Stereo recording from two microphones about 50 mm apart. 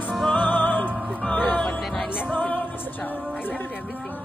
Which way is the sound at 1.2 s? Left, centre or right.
Left.